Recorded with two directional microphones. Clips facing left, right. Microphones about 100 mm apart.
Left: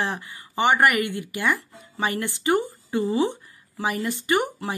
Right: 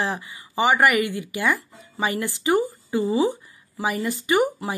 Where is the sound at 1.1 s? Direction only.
15° right (ahead or behind).